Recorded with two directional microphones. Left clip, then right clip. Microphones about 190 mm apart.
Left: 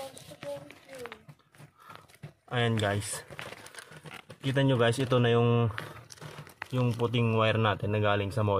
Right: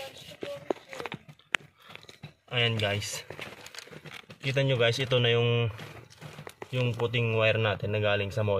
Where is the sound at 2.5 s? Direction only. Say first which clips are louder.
Right 2 dB; 10° left (ahead or behind).